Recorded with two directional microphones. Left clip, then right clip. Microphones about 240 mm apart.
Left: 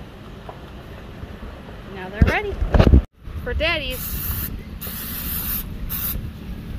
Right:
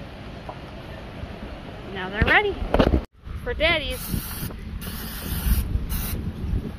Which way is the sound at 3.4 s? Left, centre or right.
Centre.